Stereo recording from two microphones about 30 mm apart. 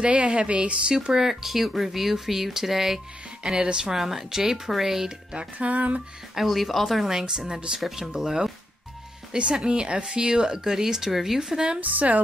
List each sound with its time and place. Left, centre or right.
0.0 s speech: right
1.1 s speech: centre
3.4 s speech: right
3.9 s speech: centre
5.6 s speech: right
6.3 s speech: centre
7.2 s speech: right
9.3 s speech: right; by 11.6 s centre
11.8 s a woman's voice: right